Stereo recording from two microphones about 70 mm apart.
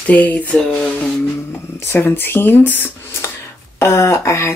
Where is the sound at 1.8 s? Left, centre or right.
Left.